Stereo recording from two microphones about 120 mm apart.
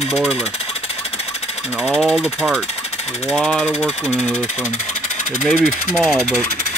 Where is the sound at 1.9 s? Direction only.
5° right (ahead or behind).